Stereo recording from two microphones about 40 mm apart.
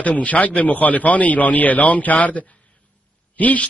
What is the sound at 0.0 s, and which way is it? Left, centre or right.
A man's voice, left.